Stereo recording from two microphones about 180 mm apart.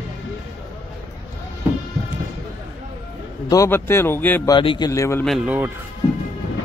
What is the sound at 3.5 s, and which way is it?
Speech, 15° left (ahead or behind).